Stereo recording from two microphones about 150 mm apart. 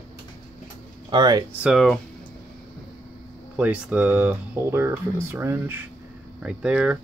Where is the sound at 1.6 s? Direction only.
Centre (ahead or behind).